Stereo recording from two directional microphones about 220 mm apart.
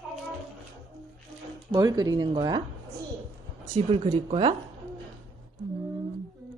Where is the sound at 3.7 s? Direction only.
25° right (ahead or behind).